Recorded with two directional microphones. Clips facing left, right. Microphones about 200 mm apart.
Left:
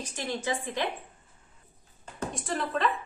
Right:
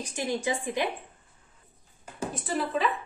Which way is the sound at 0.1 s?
15° right (ahead or behind).